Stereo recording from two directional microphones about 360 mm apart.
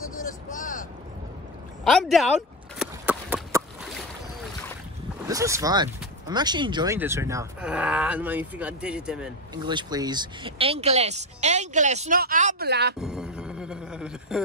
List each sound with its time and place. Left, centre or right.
0.2 s vehicle: left
1.9 s speech: centre
2.8 s clip-clop: centre
5.3 s speech: centre; by 12.9 s right
13.0 s a sound: centre